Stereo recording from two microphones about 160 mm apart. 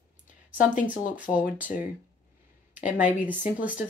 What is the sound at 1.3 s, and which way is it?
Speech, 10° right (ahead or behind).